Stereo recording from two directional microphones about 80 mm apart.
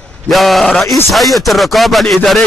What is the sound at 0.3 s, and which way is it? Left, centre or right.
A man's voice, centre.